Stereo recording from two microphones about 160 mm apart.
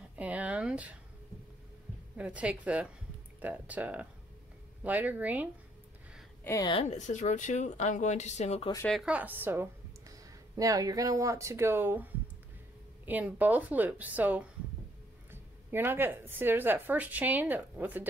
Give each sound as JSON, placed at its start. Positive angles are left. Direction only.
{"t": 0.1, "sound": "a sound", "side_deg": -10}
{"t": 2.1, "sound": "a woman's voice", "side_deg": -10}
{"t": 6.4, "sound": "a woman's voice", "side_deg": 20}
{"t": 6.7, "sound": "speech", "side_deg": 40}
{"t": 9.0, "sound": "a woman's voice", "side_deg": -10}